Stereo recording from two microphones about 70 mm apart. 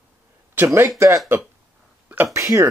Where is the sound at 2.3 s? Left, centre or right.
Right.